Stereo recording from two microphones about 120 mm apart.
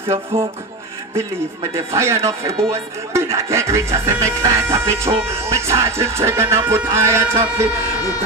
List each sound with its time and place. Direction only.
1.1 s speech: 25° right (ahead or behind)